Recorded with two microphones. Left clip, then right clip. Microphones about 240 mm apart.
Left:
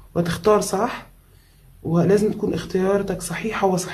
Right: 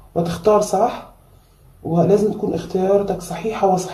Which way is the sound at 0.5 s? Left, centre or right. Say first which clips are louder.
Right 4 dB; left.